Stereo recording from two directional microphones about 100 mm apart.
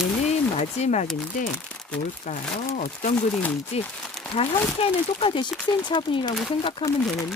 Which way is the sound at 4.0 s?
5° left (ahead or behind).